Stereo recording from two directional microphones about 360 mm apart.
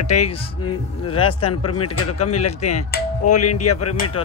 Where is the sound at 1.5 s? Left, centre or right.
Left.